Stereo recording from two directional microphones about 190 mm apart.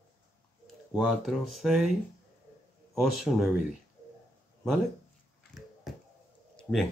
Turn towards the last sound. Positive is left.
turn(degrees=5)  # may be behind; listen again after turning